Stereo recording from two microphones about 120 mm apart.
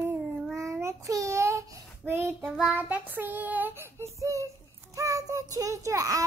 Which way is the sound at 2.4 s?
Centre (ahead or behind).